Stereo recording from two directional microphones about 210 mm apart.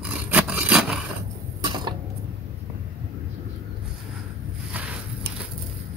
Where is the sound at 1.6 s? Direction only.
20° right (ahead or behind).